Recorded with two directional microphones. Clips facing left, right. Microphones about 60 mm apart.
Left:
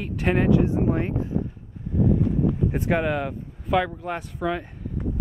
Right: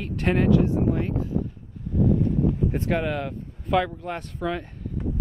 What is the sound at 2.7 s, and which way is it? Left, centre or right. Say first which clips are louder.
Speech: left 2 dB; centre.